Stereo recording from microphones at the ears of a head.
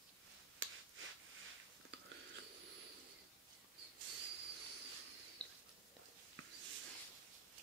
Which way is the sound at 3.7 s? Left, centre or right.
Right.